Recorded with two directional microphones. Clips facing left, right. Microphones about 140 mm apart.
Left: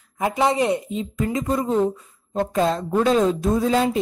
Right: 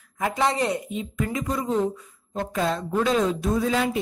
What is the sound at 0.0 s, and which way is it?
A woman's voice, 20° left (ahead or behind).